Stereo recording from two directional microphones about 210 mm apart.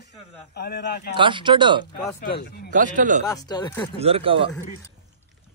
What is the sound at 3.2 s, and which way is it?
Speech, 20° left (ahead or behind).